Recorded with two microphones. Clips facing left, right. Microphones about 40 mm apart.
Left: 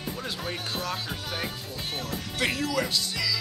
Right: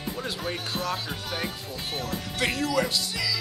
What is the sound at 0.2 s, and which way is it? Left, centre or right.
Speech, centre.